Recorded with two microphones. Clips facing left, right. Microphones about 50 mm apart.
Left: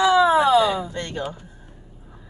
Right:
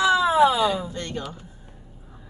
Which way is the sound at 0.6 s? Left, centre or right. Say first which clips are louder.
Left 1 dB; left.